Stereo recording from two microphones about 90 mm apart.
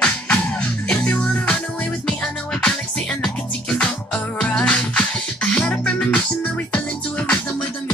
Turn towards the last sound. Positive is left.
turn(degrees=10)  # may be behind; listen again after turning